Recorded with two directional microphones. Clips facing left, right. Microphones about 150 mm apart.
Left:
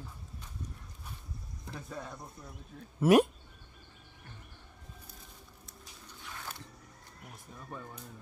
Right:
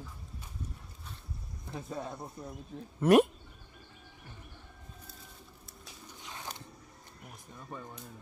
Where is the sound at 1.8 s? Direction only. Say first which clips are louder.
Right 4 dB; 20° right (ahead or behind).